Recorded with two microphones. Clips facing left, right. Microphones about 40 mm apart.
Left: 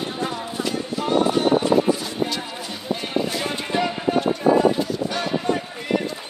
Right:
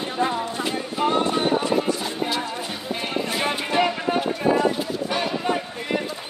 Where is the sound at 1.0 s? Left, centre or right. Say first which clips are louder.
Left 1 dB; right.